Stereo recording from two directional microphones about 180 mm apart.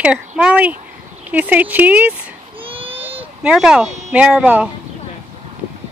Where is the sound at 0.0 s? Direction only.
5° right (ahead or behind).